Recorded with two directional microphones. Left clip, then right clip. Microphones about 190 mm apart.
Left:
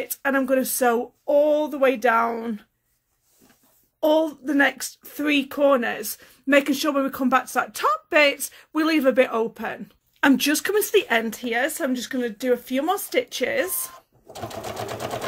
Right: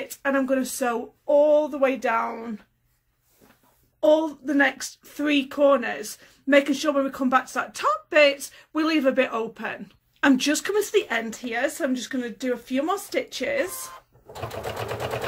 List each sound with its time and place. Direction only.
0.1 s a child's voice: 45° left (ahead or behind)
4.0 s a child's voice: 45° left (ahead or behind)
13.7 s speech: centre (ahead or behind)